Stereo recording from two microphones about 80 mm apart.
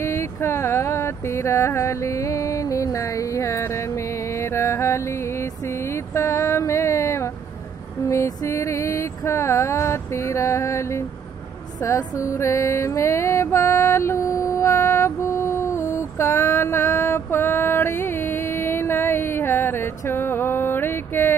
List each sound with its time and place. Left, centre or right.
0.0 s speech: left
8.0 s a sound: left
11.8 s music: left